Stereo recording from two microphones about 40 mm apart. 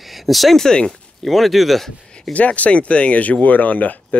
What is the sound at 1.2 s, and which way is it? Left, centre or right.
Speech, centre.